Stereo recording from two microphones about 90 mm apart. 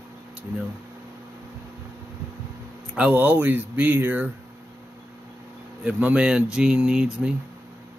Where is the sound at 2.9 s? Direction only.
15° right (ahead or behind).